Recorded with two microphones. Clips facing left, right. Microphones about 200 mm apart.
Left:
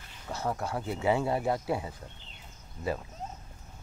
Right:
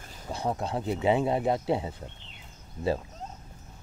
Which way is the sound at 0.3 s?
15° right (ahead or behind).